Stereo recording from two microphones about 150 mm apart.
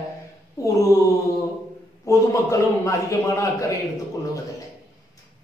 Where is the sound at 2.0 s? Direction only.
20° left (ahead or behind).